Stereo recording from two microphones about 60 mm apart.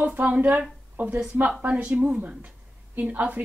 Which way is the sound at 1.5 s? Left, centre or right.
Centre.